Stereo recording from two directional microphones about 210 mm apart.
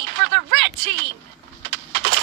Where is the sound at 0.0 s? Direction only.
60° right (ahead or behind).